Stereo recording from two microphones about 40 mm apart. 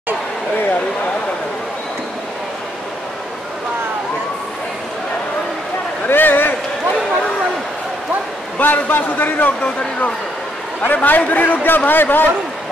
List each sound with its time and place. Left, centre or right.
6.0 s a sound: left
8.5 s a man's voice: left
10.8 s a man's voice: left